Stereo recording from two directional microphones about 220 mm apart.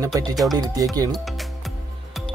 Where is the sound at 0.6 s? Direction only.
15° right (ahead or behind).